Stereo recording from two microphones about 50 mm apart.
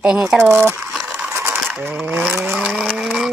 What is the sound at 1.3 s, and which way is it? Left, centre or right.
Mechanisms, right.